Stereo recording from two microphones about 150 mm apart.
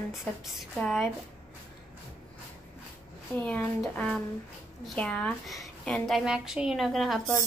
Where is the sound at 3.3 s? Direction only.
10° left (ahead or behind).